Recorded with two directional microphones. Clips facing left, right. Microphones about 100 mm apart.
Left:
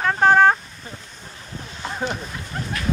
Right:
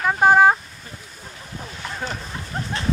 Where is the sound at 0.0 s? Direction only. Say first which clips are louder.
Even; 5° right (ahead or behind).